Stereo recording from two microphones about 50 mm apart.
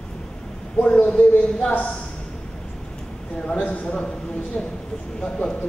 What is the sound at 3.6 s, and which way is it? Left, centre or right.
Speech, left.